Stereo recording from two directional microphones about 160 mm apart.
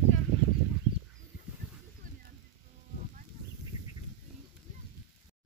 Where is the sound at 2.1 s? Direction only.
55° right (ahead or behind).